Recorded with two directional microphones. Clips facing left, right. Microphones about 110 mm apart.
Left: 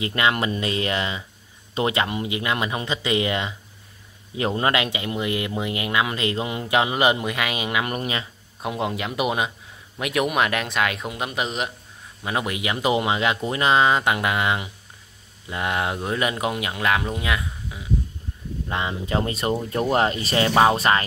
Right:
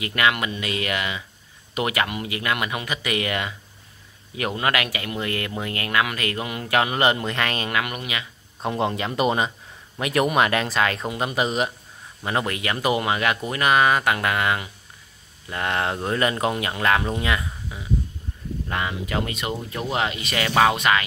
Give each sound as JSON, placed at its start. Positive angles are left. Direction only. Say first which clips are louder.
{"t": 0.0, "sound": "speech", "louder": "left 1 dB", "side_deg": 25}
{"t": 7.8, "sound": "speech", "louder": "left 3 dB", "side_deg": 35}
{"t": 8.6, "sound": "speech", "louder": "right 2 dB", "side_deg": 5}
{"t": 18.7, "sound": "speech", "louder": "left 2 dB", "side_deg": 25}